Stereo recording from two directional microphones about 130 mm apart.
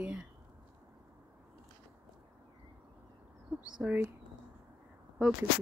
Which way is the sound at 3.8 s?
10° right (ahead or behind).